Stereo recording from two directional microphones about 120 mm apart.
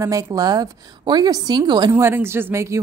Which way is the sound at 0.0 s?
30° right (ahead or behind).